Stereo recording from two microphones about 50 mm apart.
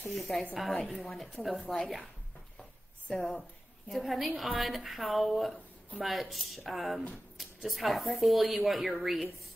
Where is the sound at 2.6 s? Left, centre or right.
Centre.